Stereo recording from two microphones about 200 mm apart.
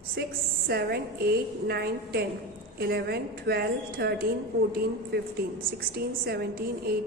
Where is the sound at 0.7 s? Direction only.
55° right (ahead or behind).